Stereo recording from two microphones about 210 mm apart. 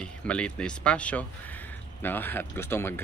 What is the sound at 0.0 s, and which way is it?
Speech, 5° left (ahead or behind).